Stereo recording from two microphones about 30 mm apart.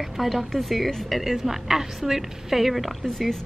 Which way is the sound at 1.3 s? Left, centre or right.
Centre.